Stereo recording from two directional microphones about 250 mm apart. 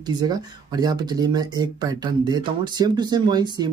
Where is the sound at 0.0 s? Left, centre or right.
Centre.